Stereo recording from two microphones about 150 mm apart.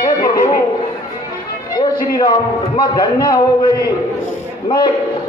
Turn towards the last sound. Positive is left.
turn(degrees=30)  # may be behind; listen again after turning